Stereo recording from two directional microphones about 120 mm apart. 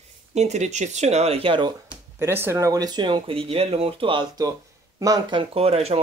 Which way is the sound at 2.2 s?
20° right (ahead or behind).